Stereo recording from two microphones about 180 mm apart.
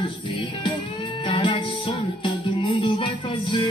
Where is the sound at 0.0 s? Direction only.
25° left (ahead or behind).